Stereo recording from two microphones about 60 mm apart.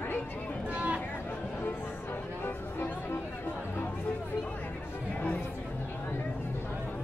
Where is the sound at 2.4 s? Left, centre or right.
Left.